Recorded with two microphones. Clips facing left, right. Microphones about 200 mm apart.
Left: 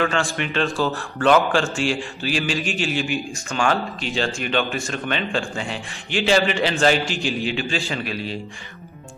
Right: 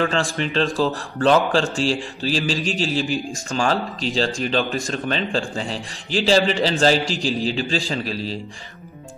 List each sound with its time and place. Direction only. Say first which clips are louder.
0.0 s a man's voice: right 1 dB; 35° right (ahead or behind)